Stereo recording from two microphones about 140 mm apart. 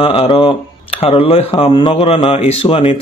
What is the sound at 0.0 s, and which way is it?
A man's voice, 35° left (ahead or behind).